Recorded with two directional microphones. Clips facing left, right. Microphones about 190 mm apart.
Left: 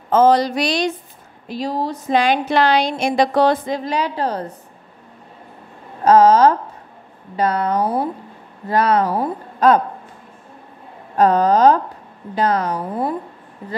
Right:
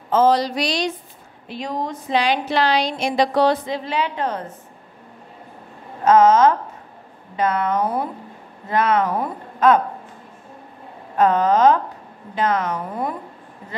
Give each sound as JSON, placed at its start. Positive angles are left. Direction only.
{"t": 0.1, "sound": "a woman's voice", "side_deg": 50}
{"t": 1.5, "sound": "speech", "side_deg": 35}
{"t": 2.0, "sound": "a woman's voice", "side_deg": 50}
{"t": 6.0, "sound": "speech", "side_deg": 35}
{"t": 11.1, "sound": "speech", "side_deg": 35}